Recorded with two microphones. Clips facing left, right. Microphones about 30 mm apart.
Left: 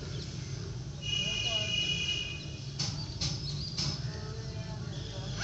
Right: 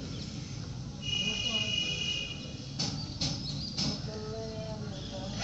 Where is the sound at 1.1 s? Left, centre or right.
Right.